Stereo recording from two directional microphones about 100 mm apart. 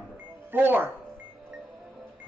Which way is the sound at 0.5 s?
20° right (ahead or behind).